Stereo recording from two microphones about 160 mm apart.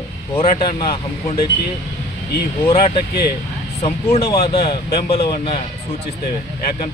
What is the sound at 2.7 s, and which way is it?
Speech, 40° left (ahead or behind).